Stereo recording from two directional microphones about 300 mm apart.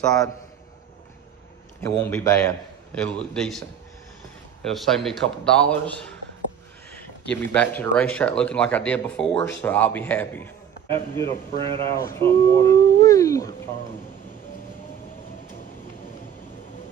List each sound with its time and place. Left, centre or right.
1.8 s a man's voice: centre
4.6 s a man's voice: centre
6.9 s a sound: centre
7.5 s a man's voice: centre
11.5 s speech: centre
11.8 s speech: centre